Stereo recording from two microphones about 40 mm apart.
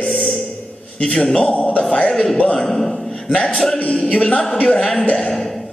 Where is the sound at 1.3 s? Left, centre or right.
Left.